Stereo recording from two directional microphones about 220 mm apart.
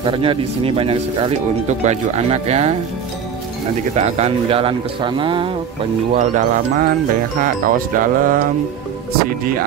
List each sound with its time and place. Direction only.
0.0 s speech: 25° right (ahead or behind)
3.9 s speech: 30° right (ahead or behind)
6.1 s music: 35° right (ahead or behind)